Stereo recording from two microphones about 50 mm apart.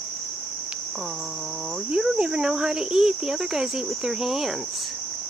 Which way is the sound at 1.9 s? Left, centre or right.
Centre.